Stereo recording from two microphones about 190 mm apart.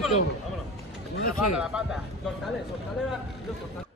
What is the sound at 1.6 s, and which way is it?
Speech, 5° right (ahead or behind).